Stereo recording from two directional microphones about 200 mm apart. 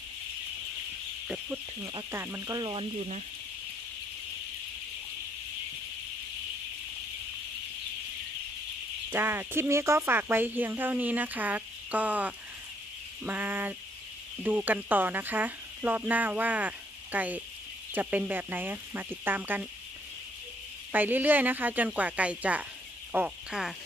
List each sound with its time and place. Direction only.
1.2 s a sound: 5° right (ahead or behind)
1.8 s speech: 20° right (ahead or behind)
3.0 s speech: 35° right (ahead or behind)
9.1 s speech: 10° right (ahead or behind)
20.9 s speech: 10° right (ahead or behind)